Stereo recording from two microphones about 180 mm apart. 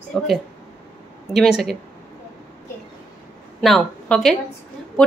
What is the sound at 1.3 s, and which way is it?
Speech, centre (ahead or behind).